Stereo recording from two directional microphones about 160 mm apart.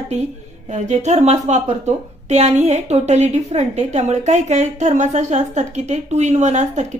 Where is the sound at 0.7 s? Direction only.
50° right (ahead or behind).